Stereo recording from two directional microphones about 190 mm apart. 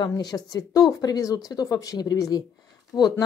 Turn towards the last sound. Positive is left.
turn(degrees=20)  # may be behind; listen again after turning